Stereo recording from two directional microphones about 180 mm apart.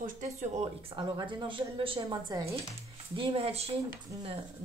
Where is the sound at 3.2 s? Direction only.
30° right (ahead or behind).